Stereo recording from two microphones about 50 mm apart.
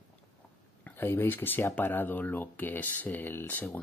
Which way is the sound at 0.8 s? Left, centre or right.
Left.